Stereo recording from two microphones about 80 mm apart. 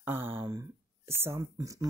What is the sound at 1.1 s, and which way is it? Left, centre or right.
Speech, right.